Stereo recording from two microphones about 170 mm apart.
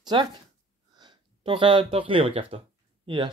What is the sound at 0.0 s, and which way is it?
Speech, 25° right (ahead or behind).